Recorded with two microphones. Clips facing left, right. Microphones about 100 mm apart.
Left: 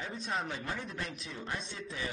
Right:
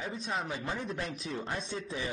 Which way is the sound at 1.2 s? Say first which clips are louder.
Right 4 dB; 35° right (ahead or behind).